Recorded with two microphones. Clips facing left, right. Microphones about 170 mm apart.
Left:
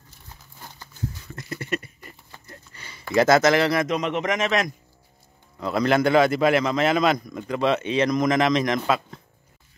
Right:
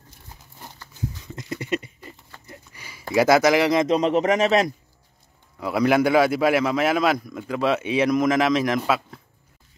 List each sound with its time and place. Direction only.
1.2 s a sound: 20° right (ahead or behind)
3.8 s a man's voice: 30° right (ahead or behind)
5.6 s a man's voice: 10° right (ahead or behind)